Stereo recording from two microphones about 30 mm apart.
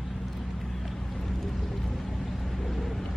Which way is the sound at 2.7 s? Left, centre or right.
Centre.